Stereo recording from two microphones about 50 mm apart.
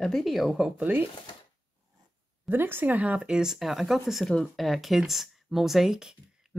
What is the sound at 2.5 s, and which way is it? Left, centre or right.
Speech, right.